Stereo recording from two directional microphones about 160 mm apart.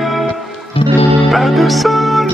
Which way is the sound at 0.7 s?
35° left (ahead or behind).